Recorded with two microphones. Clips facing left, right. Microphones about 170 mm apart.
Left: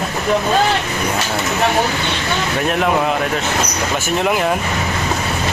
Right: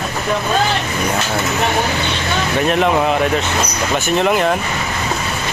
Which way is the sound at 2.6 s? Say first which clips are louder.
Right 4 dB; centre (ahead or behind).